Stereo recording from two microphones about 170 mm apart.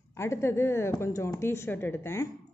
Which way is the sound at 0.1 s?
15° left (ahead or behind).